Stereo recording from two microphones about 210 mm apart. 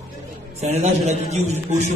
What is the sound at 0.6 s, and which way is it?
A man's voice, 30° right (ahead or behind).